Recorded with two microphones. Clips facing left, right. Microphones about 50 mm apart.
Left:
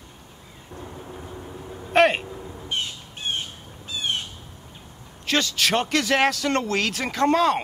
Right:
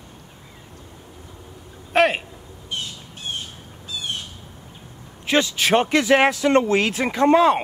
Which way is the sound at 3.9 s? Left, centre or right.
Left.